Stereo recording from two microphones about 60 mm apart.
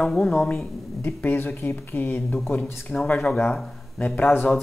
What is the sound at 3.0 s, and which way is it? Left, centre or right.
Speech, left.